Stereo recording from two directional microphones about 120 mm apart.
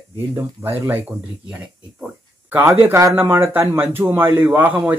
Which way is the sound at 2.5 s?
15° right (ahead or behind).